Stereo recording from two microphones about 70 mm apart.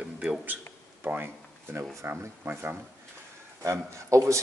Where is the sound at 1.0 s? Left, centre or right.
Right.